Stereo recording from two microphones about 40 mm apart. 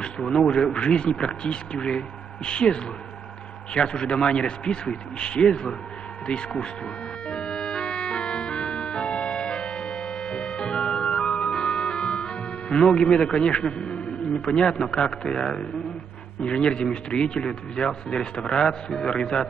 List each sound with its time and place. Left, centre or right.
0.0 s a man's voice: centre
7.2 s music: left
16.3 s a man's voice: left